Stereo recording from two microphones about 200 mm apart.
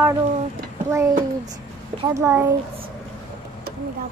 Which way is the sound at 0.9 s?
15° right (ahead or behind).